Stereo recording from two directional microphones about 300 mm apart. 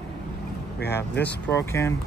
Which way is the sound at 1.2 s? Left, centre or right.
Centre.